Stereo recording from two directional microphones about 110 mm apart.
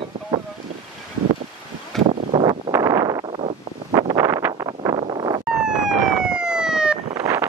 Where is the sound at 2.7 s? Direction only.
30° right (ahead or behind).